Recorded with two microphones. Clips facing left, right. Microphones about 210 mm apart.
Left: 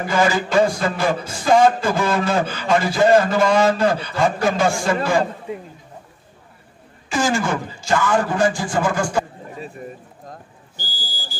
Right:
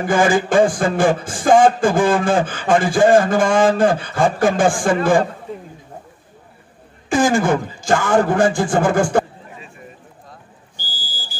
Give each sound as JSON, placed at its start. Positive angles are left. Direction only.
{"t": 0.0, "sound": "a man's voice", "side_deg": -50}
{"t": 7.1, "sound": "a man's voice", "side_deg": -50}
{"t": 10.8, "sound": "a sound", "side_deg": 15}